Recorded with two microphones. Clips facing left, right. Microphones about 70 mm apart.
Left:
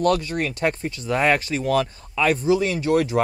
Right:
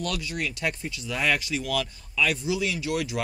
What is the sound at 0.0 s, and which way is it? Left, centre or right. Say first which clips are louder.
Speech: left 10 dB; left.